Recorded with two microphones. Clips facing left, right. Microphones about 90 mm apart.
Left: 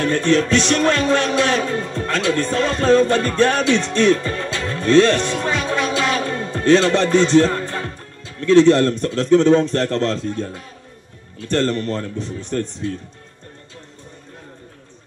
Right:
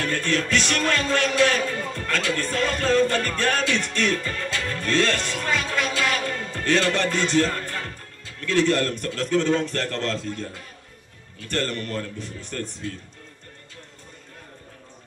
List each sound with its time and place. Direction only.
0.0 s music: 20° left (ahead or behind)
11.3 s a man's voice: 25° left (ahead or behind)